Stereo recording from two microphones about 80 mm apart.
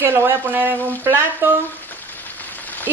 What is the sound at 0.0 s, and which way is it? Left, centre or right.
A woman's voice, right.